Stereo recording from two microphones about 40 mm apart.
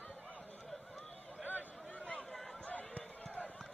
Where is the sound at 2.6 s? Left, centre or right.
Left.